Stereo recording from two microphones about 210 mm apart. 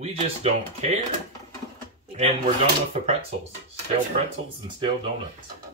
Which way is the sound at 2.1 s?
30° right (ahead or behind).